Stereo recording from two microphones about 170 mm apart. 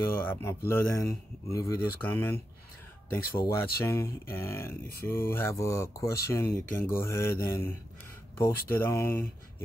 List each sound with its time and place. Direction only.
0.2 s speech: 10° left (ahead or behind)